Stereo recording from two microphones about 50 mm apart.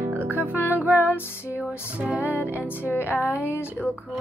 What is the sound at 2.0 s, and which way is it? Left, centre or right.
Music, right.